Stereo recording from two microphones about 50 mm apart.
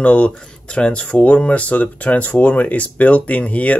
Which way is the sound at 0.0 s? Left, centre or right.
Left.